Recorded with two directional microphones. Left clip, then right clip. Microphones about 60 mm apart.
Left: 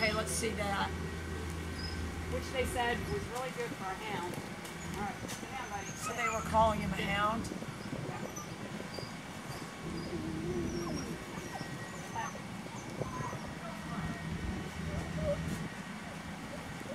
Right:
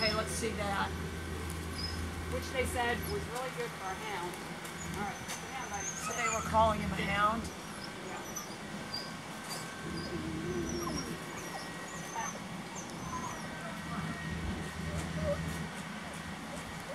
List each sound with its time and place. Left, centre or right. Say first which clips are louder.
0.0 s a sound: even; left
2.5 s speech: even; centre
6.1 s speech: even; centre